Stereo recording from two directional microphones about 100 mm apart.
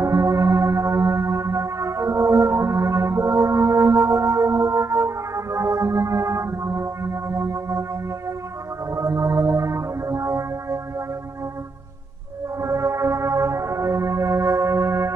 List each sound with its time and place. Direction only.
0.0 s music: 35° right (ahead or behind)
8.9 s music: 30° right (ahead or behind)
12.6 s music: 30° right (ahead or behind)